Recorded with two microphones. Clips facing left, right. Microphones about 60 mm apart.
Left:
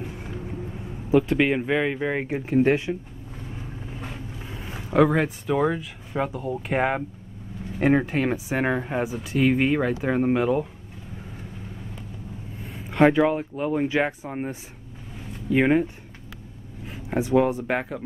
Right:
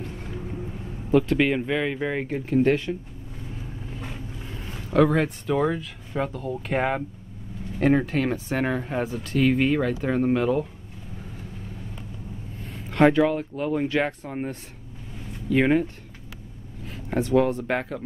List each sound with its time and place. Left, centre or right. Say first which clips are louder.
1.1 s speech: even; centre
4.0 s speech: even; centre
12.6 s a sound: even; centre
13.3 s speech: left 1 dB; centre